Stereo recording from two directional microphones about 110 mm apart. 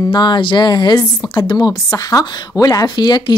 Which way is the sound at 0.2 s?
45° left (ahead or behind).